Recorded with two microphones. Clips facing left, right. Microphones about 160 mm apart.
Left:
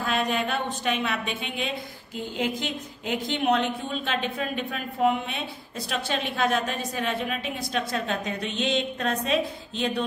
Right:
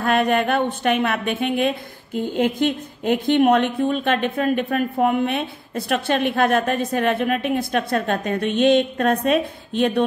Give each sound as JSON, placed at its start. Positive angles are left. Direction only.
{"t": 0.0, "sound": "speech", "side_deg": -60}